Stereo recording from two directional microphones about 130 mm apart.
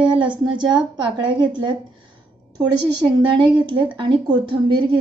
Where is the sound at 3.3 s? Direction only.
40° right (ahead or behind).